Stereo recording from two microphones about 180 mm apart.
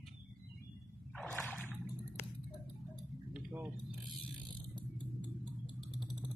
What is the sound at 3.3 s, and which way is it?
Keys jangling, 10° right (ahead or behind).